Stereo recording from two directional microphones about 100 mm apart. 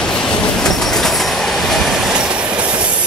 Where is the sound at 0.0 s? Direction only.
5° left (ahead or behind).